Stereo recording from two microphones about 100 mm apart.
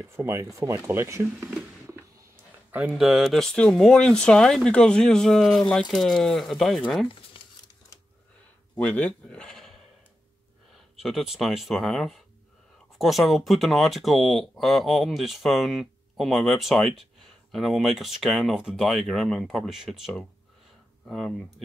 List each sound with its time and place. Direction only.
0.0 s speech: 30° right (ahead or behind)
2.9 s speech: centre (ahead or behind)
7.1 s a sound: 60° left (ahead or behind)
8.7 s sheep: 15° left (ahead or behind)
11.0 s speech: centre (ahead or behind)